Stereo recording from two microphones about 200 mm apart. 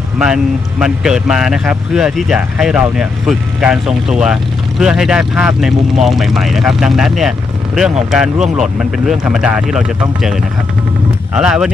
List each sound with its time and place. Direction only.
0.2 s speech: 5° right (ahead or behind)